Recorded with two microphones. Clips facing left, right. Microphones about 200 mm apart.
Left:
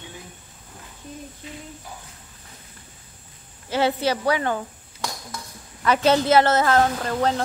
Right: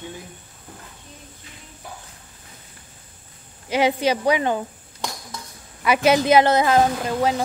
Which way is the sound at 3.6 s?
15° right (ahead or behind).